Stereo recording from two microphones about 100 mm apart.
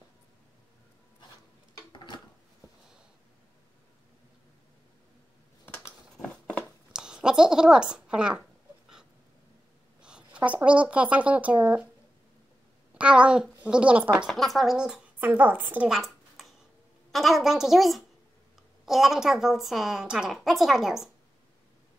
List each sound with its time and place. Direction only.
1.9 s a sound: 50° left (ahead or behind)
5.7 s a sound: 15° left (ahead or behind)
6.9 s speech: 5° right (ahead or behind)
10.0 s speech: 10° right (ahead or behind)
12.9 s a woman's voice: 10° right (ahead or behind)
14.1 s a woman's voice: centre (ahead or behind)
15.1 s a woman's voice: 20° right (ahead or behind)
15.9 s a sound: centre (ahead or behind)
17.1 s a woman's voice: centre (ahead or behind)